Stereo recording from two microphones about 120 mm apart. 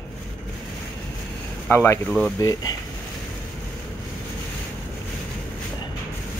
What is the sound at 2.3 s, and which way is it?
Speech, 25° left (ahead or behind).